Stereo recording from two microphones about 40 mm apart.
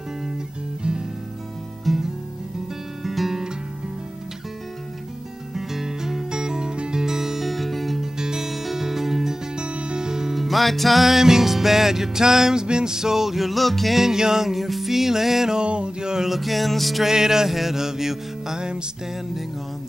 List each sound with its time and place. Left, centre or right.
0.8 s music: right
1.9 s guitar: centre
3.0 s music: centre
5.5 s music: centre
7.4 s music: centre
8.0 s music: centre
9.6 s music: right
10.3 s music: centre
13.9 s music: centre
15.6 s a sound: right
16.3 s music: centre
17.1 s music: centre